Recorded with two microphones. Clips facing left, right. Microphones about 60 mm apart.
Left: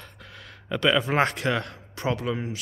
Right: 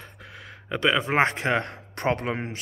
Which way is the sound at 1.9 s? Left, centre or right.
Right.